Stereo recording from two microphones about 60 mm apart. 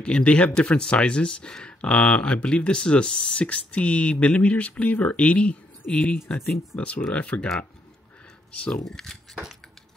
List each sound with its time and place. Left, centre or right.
0.0 s speech: centre
6.3 s speech: centre
6.8 s speech: centre
8.5 s speech: centre